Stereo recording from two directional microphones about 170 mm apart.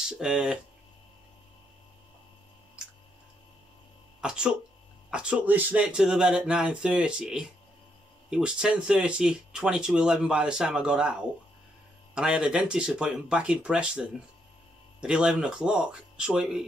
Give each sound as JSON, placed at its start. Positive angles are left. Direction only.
{"t": 0.2, "sound": "speech", "side_deg": -5}
{"t": 2.8, "sound": "a sound", "side_deg": -5}
{"t": 4.2, "sound": "speech", "side_deg": -5}